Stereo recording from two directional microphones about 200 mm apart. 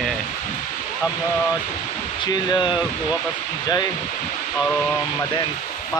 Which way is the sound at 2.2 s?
20° left (ahead or behind).